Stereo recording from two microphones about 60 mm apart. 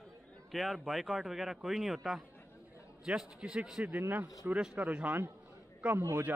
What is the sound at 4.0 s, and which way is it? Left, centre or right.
Speech, right.